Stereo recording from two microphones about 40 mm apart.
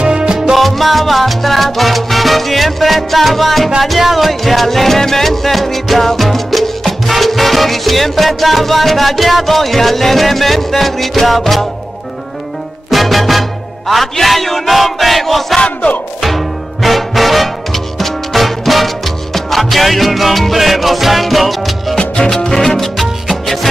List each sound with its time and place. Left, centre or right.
0.0 s music: right
0.5 s salsa music: centre
3.8 s music: centre
12.9 s music: centre
22.1 s music: centre